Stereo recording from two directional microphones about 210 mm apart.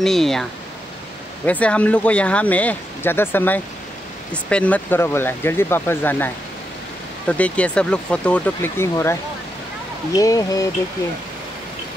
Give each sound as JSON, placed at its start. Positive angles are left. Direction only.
{"t": 0.0, "sound": "speech", "side_deg": 0}